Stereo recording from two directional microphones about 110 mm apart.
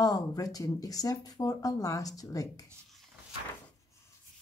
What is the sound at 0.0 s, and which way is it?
Speech, 35° left (ahead or behind).